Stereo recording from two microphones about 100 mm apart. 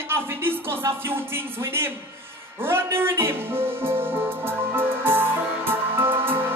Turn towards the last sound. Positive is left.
turn(degrees=-20)  # may be behind; listen again after turning